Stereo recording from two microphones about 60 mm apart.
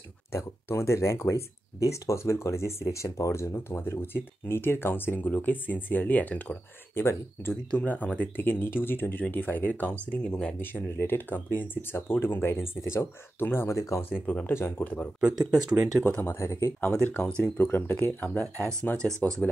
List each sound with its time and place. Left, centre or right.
0.3 s speech: left
3.5 s speech: left
7.0 s speech: left
7.7 s speech: left
10.2 s speech: centre
10.6 s speech: left
14.3 s speech: left
15.3 s speech: right
16.0 s speech: left
16.3 s speech: left
17.4 s speech: left
19.1 s speech: right